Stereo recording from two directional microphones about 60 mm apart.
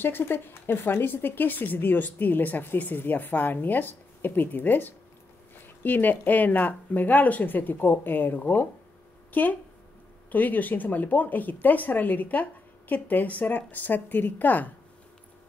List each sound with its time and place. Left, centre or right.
0.0 s speech: left